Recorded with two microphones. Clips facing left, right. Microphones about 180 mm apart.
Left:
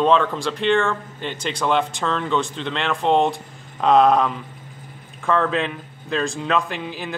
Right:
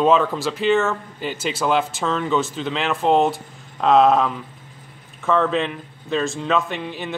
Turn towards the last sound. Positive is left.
turn(degrees=0)  # may be behind; listen again after turning